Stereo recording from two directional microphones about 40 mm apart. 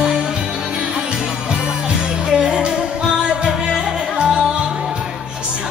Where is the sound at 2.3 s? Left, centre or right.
Centre.